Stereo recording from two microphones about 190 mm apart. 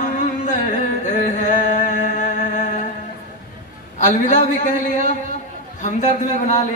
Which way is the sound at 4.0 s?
40° left (ahead or behind).